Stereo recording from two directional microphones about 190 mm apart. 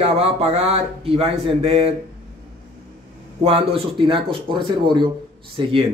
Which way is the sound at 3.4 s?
30° right (ahead or behind).